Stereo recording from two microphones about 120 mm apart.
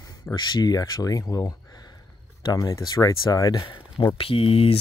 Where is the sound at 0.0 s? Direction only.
35° left (ahead or behind).